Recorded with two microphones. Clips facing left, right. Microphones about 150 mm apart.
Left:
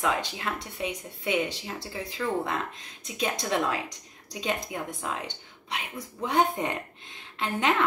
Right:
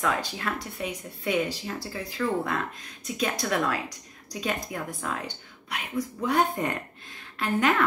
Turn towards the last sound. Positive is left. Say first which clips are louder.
# right 2 dB
turn(degrees=20)  # may be behind; listen again after turning